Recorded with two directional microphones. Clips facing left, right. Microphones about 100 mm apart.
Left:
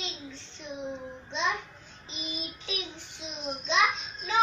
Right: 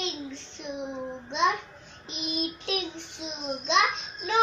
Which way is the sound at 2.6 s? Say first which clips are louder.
Right 6 dB; 65° right (ahead or behind).